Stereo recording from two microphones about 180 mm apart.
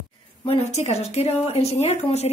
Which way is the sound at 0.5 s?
40° left (ahead or behind).